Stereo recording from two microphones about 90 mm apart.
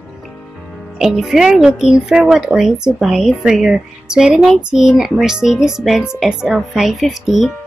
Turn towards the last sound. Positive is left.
turn(degrees=-5)  # may be behind; listen again after turning